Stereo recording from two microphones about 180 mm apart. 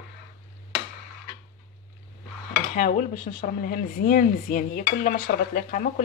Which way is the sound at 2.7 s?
45° left (ahead or behind).